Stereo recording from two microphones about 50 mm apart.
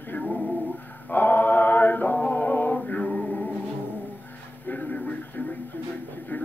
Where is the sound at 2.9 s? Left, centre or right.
Left.